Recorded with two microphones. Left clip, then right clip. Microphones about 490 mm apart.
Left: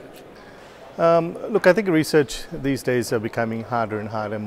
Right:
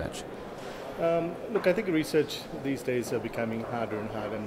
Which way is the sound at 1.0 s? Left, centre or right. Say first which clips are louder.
Left 10 dB; left.